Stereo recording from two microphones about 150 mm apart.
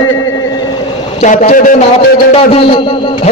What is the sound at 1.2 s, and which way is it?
Speech, 55° left (ahead or behind).